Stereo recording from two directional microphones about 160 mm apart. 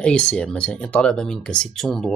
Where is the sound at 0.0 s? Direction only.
5° left (ahead or behind).